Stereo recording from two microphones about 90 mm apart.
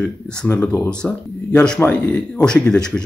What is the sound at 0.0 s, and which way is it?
Speech, 10° left (ahead or behind).